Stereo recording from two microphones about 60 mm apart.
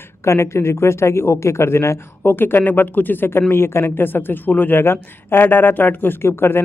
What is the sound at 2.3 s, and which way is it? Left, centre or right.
Speech, left.